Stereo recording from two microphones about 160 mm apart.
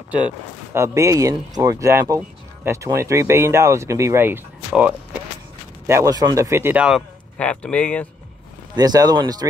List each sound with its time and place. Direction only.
0.7 s speech: 20° right (ahead or behind)
7.3 s speech: 5° left (ahead or behind)
8.7 s speech: 25° right (ahead or behind)